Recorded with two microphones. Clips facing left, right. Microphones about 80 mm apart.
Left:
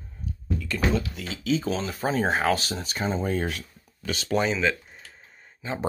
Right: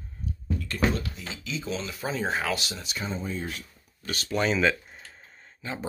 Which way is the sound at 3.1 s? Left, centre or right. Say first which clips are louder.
Left 7 dB; left.